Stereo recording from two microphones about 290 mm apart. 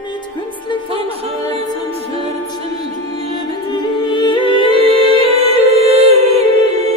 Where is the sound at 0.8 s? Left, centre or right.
Centre.